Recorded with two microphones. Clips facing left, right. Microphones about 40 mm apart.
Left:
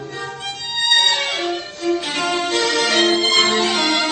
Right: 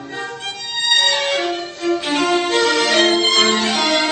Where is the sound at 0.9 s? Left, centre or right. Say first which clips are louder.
Right 1 dB; centre.